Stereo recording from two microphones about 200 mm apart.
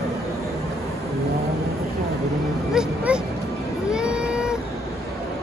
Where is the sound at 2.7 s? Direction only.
5° right (ahead or behind).